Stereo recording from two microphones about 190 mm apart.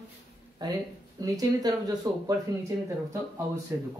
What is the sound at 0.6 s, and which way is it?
Speech, 20° right (ahead or behind).